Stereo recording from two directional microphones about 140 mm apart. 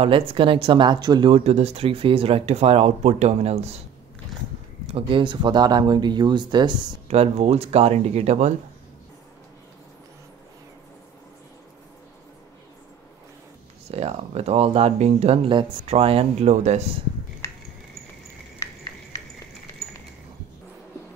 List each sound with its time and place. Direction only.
0.0 s speech: 40° right (ahead or behind)
1.3 s speech: 50° right (ahead or behind)
4.9 s speech: 35° right (ahead or behind)
7.1 s speech: 50° right (ahead or behind)
13.8 s speech: 45° right (ahead or behind)